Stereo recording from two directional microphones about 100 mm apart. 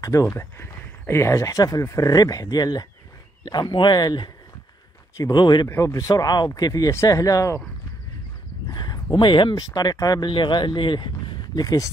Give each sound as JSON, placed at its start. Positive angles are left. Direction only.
{"t": 0.0, "sound": "speech", "side_deg": 30}
{"t": 5.7, "sound": "speech", "side_deg": 30}
{"t": 8.7, "sound": "speech", "side_deg": 40}
{"t": 10.3, "sound": "speech", "side_deg": 50}